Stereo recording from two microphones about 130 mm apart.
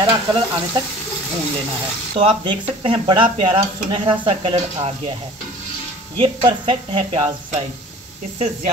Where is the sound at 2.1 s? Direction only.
40° right (ahead or behind).